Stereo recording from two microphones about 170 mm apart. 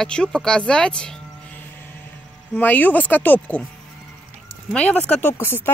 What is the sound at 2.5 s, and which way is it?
Speech, 10° left (ahead or behind).